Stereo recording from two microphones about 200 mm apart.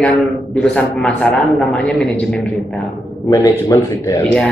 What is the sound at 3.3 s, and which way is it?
Speech, 15° left (ahead or behind).